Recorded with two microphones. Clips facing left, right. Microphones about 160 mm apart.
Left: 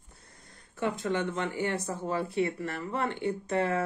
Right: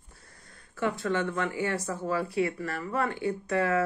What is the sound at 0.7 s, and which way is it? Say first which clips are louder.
Speech: right 1 dB; 20° left (ahead or behind).